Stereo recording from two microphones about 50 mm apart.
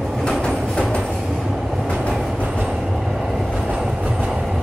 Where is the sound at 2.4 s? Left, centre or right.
Right.